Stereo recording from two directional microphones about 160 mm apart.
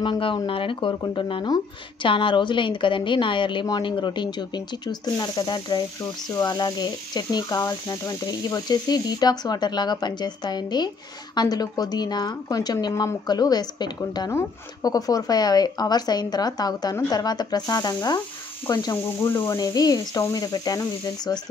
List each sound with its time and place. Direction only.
0.0 s a woman's voice: 30° left (ahead or behind)
19.2 s a sound: 15° left (ahead or behind)
19.5 s speech: 25° left (ahead or behind)